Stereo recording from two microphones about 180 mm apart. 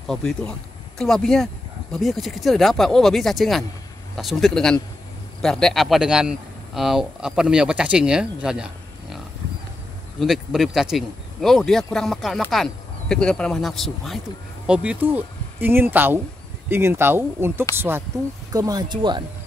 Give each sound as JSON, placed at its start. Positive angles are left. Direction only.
{"t": 0.1, "sound": "speech", "side_deg": 0}
{"t": 10.2, "sound": "speech", "side_deg": 0}